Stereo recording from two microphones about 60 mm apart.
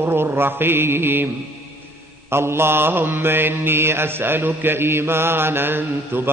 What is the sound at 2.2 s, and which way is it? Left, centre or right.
Mantra, right.